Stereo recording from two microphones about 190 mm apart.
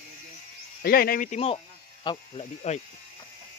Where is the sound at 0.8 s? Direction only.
50° left (ahead or behind).